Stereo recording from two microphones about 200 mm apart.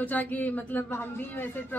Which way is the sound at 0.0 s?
10° left (ahead or behind).